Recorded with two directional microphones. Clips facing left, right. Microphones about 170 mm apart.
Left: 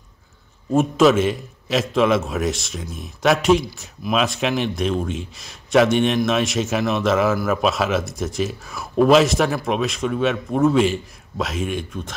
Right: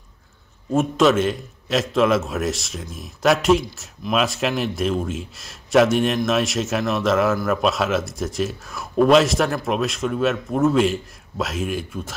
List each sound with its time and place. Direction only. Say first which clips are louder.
0.7 s a man's voice: left 2 dB; centre (ahead or behind)